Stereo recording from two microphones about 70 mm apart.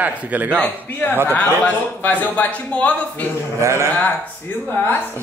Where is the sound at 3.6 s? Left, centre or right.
Right.